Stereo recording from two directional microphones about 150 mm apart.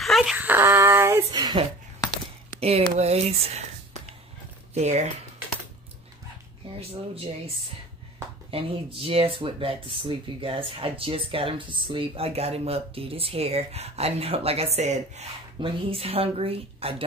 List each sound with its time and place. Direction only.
0.0 s a sound: centre (ahead or behind); by 1.2 s 15° right (ahead or behind)
1.3 s speech: 30° right (ahead or behind)
2.6 s speech: 45° right (ahead or behind)
4.7 s speech: 50° right (ahead or behind)
6.8 s speech: 40° right (ahead or behind)
8.5 s speech: 40° right (ahead or behind)